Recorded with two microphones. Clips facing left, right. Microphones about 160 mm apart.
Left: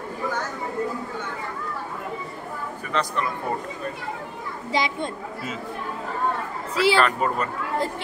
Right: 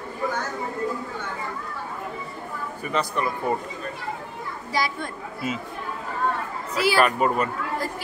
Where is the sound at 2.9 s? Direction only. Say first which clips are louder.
Even; 10° right (ahead or behind).